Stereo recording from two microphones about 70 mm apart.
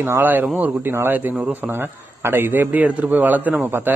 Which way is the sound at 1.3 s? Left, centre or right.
Centre.